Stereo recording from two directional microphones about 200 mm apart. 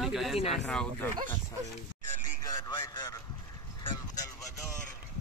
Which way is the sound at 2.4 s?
15° left (ahead or behind).